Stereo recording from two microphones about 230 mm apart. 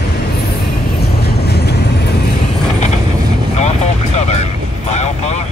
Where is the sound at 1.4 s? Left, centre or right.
Left.